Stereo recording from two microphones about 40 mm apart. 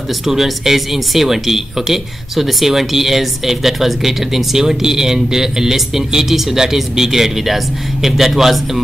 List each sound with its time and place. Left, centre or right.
0.3 s speech: centre